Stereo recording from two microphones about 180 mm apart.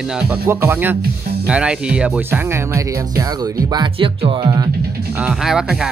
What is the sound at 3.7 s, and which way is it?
Speech, 25° right (ahead or behind).